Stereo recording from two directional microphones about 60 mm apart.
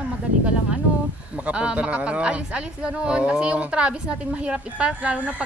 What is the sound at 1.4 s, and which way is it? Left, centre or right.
Speech, right.